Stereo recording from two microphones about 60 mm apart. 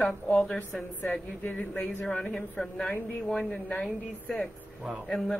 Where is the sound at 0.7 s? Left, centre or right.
Left.